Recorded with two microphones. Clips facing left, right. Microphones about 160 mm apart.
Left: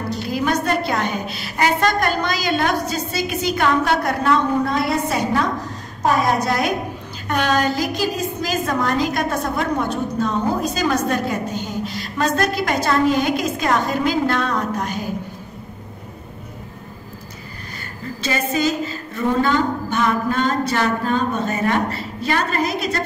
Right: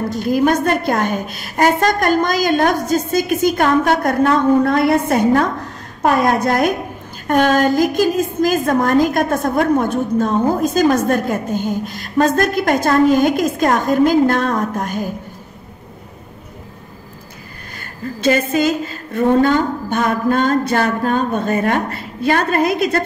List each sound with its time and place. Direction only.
0.1 s a woman's voice: 50° right (ahead or behind)
18.2 s a woman's voice: 50° right (ahead or behind)